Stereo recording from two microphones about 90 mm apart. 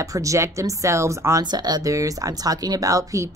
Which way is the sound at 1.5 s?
50° right (ahead or behind).